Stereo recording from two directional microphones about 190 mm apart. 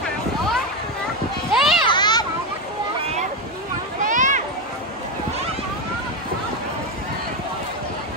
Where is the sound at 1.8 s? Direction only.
25° left (ahead or behind).